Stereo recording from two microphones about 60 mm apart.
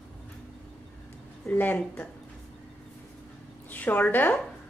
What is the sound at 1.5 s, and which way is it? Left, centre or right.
Speech, left.